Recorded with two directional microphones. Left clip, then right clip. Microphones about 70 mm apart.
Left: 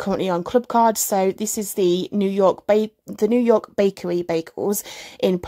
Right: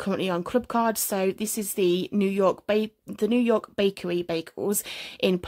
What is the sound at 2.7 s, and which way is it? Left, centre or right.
Speech, left.